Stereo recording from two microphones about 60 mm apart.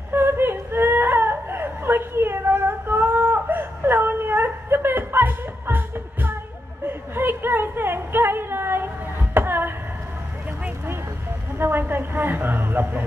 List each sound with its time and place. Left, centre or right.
0.1 s whimper: right
6.9 s a sound: right
11.5 s a woman's voice: right